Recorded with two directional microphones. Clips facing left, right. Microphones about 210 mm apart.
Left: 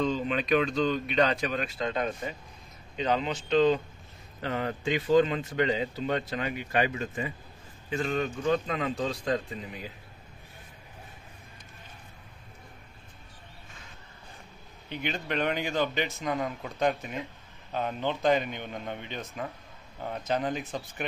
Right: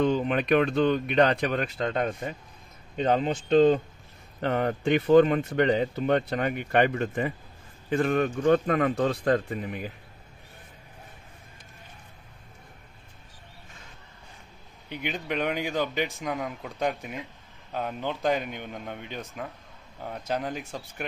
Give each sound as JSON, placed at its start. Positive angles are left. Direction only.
{"t": 0.0, "sound": "speech", "side_deg": -60}
{"t": 14.9, "sound": "a man's voice", "side_deg": -15}